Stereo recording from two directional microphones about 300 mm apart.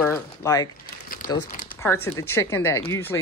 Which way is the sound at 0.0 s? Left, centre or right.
Centre.